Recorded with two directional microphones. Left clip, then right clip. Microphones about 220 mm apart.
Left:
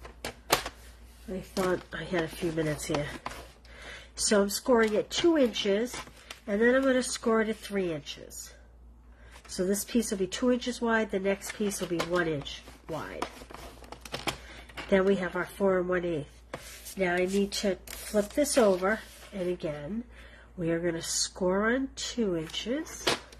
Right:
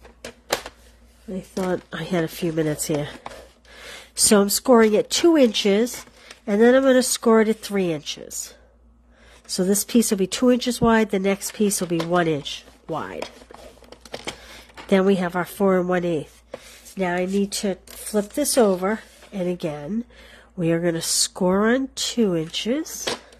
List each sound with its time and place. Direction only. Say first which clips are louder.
1.7 s speech: right 5 dB; 50° right (ahead or behind)
4.3 s speech: right 8 dB; 45° right (ahead or behind)
9.6 s speech: right 8 dB; 50° right (ahead or behind)
12.9 s chopping: right 8 dB; 40° right (ahead or behind)
14.9 s speech: right 6 dB; 45° right (ahead or behind)